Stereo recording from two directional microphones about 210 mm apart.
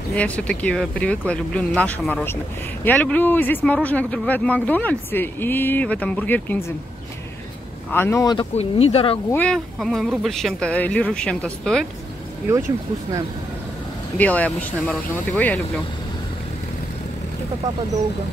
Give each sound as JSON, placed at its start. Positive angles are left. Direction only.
{"t": 0.1, "sound": "speech", "side_deg": 5}
{"t": 7.9, "sound": "speech", "side_deg": 10}
{"t": 9.3, "sound": "speech", "side_deg": 5}
{"t": 14.1, "sound": "speech", "side_deg": 5}